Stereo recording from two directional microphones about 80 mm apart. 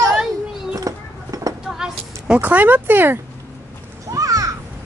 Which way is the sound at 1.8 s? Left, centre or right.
Centre.